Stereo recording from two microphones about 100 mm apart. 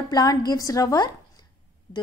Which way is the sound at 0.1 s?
40° left (ahead or behind).